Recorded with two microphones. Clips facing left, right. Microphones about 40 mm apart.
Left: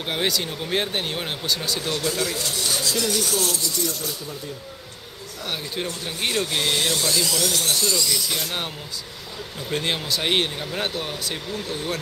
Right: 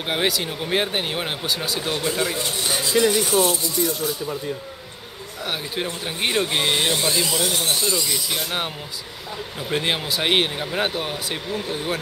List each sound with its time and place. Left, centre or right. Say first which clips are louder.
0.0 s speech: right 2 dB; centre
5.4 s speech: right 2 dB; centre